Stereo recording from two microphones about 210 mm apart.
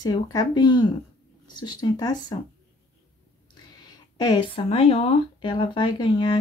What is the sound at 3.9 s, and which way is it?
Speech, 20° left (ahead or behind).